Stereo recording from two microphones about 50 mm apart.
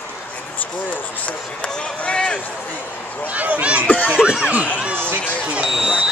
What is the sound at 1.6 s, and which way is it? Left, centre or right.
Run, centre.